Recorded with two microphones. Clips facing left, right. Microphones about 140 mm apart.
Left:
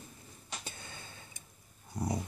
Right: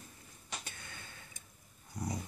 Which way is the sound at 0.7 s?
30° left (ahead or behind).